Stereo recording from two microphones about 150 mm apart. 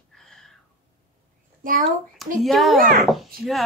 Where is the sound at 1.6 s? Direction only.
65° right (ahead or behind).